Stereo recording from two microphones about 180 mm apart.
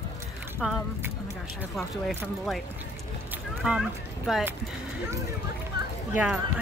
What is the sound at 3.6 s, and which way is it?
Speech, 5° right (ahead or behind).